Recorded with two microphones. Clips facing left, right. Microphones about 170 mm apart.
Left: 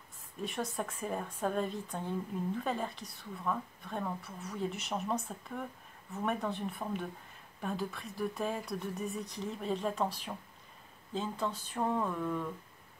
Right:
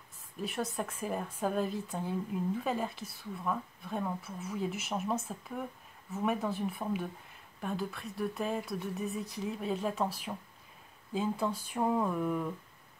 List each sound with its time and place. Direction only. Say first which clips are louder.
0.4 s speech: right 1 dB; centre (ahead or behind)